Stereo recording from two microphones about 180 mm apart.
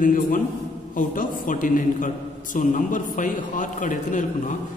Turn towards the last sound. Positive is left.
turn(degrees=45)  # may be behind; listen again after turning